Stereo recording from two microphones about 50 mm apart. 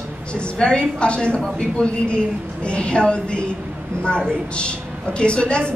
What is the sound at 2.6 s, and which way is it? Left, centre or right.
Speech, left.